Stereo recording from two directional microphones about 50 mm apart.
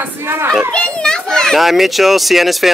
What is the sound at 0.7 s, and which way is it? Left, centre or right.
Children playing, centre.